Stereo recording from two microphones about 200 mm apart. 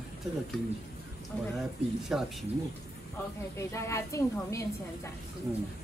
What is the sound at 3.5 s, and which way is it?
A woman's voice, 15° left (ahead or behind).